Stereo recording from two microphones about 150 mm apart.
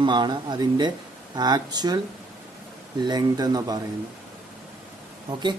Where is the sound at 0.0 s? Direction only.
30° right (ahead or behind).